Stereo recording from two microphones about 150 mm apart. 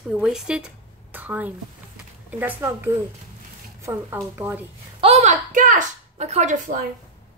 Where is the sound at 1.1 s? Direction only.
10° right (ahead or behind).